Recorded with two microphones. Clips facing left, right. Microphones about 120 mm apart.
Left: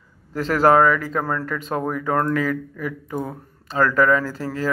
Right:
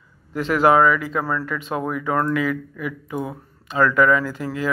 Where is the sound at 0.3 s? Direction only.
40° left (ahead or behind).